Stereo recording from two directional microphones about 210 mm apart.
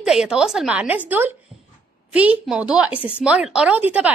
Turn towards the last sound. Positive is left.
turn(degrees=-5)  # may be behind; listen again after turning